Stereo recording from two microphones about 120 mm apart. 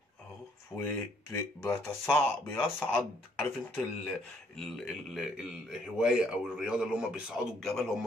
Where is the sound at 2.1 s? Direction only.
10° left (ahead or behind).